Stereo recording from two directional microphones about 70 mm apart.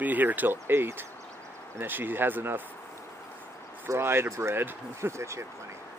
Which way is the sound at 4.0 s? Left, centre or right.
Right.